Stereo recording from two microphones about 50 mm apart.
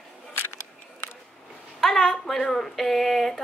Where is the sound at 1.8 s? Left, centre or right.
Centre.